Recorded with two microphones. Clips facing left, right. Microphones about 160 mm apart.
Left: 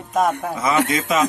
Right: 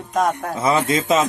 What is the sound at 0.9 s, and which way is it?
Speech, 25° right (ahead or behind).